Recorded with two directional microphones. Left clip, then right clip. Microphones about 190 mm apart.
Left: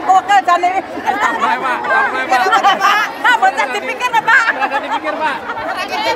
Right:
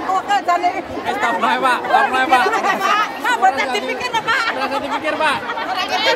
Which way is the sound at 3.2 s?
45° left (ahead or behind).